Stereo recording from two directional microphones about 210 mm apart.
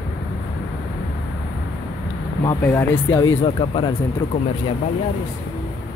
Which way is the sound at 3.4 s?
25° left (ahead or behind).